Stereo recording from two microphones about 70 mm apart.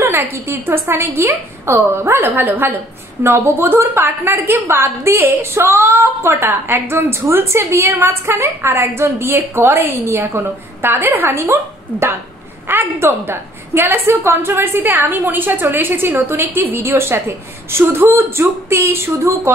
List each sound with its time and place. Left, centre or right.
0.0 s a woman's voice: right
12.6 s a woman's voice: right